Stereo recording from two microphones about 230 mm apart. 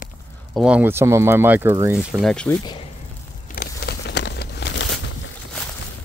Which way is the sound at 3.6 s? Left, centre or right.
Left.